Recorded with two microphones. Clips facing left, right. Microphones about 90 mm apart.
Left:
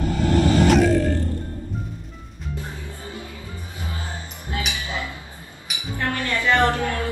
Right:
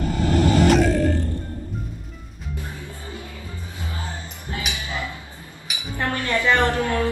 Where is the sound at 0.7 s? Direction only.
Centre (ahead or behind).